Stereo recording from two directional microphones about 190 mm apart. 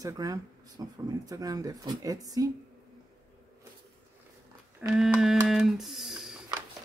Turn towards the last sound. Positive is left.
turn(degrees=0)  # may be behind; listen again after turning